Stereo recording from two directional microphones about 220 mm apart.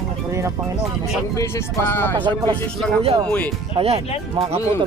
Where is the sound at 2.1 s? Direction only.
20° right (ahead or behind).